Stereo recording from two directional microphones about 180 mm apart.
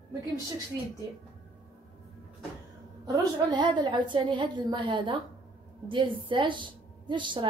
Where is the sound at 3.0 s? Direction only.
20° right (ahead or behind).